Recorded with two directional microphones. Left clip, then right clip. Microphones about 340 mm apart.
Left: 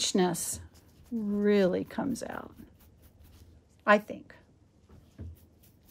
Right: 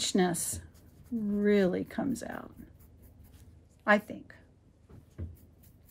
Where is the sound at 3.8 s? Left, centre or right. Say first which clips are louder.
Left 2 dB; centre.